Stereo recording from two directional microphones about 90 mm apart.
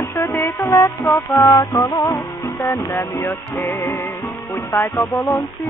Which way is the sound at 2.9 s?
30° left (ahead or behind).